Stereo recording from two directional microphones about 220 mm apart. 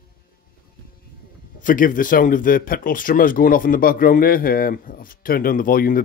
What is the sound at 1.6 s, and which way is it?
Speech, 35° left (ahead or behind).